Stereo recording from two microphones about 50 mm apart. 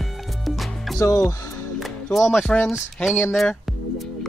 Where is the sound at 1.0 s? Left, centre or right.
Left.